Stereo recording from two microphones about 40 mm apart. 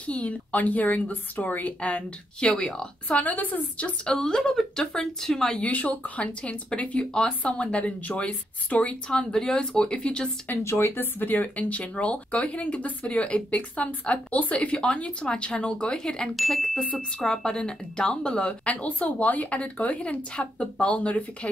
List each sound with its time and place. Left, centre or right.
0.0 s a woman's voice: left
3.1 s a woman's voice: left; by 5.5 s centre
5.5 s a woman's voice: left
6.2 s a woman's voice: left
9.1 s speech: left
10.5 s a woman's voice: left
16.3 s speech: centre
16.8 s a woman's voice: left